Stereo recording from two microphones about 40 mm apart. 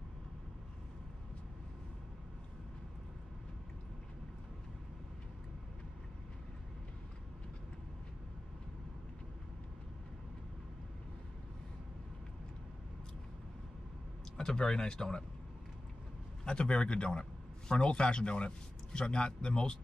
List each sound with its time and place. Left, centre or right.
14.3 s speech: centre
16.4 s a man's voice: left